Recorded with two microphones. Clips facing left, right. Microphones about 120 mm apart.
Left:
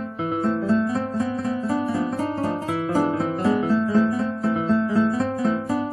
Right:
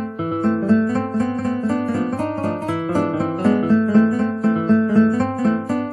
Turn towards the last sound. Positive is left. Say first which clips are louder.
# right 3 dB
turn(degrees=0)  # may be behind; listen again after turning